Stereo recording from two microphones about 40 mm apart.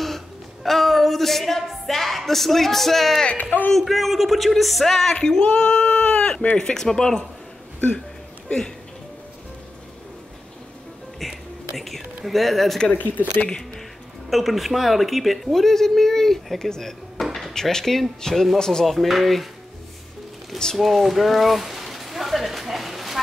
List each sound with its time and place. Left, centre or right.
0.7 s a woman's voice: centre
5.1 s music: centre
5.5 s sheep: left
6.5 s speech: centre
11.1 s whispering: centre
12.3 s a woman's voice: centre
12.9 s speech: left
14.3 s a woman's voice: centre
17.2 s a sound: centre
17.6 s a woman's voice: centre
18.9 s a woman's voice: centre
20.7 s a sound: centre